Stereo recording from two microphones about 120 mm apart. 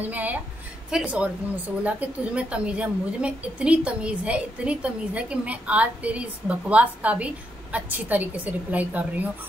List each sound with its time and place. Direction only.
0.0 s a woman's voice: 15° right (ahead or behind)